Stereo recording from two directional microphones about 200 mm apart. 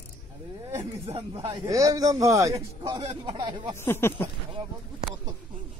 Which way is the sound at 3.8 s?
10° left (ahead or behind).